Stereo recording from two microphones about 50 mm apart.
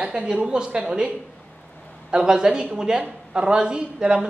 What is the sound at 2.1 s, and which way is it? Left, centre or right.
A woman's voice, centre.